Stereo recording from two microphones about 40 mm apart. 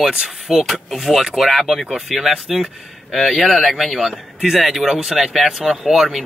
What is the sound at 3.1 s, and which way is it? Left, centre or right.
Speech, centre.